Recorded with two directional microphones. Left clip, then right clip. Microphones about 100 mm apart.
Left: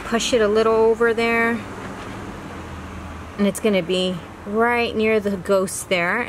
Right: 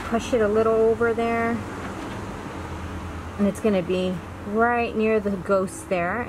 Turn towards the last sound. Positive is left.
turn(degrees=65)  # may be behind; listen again after turning